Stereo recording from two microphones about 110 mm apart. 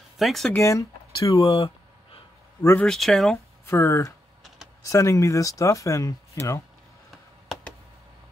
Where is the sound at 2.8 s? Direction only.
5° left (ahead or behind).